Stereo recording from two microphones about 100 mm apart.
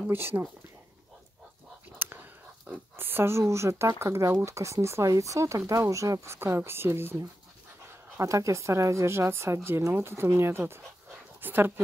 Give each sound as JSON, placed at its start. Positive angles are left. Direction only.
{"t": 0.0, "sound": "speech", "side_deg": -20}
{"t": 2.0, "sound": "speech", "side_deg": -20}
{"t": 8.2, "sound": "speech", "side_deg": -30}